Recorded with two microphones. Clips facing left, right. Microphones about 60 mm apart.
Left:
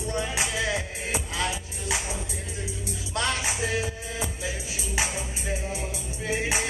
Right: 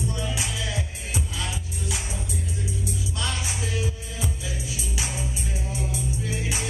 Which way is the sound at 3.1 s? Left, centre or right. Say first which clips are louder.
Left 3 dB; left.